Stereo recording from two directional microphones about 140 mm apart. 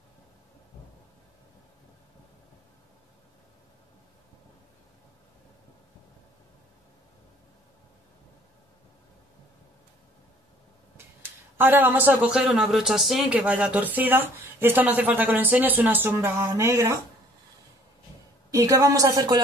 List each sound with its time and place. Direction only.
11.5 s speech: 15° right (ahead or behind)
18.5 s a woman's voice: 25° right (ahead or behind)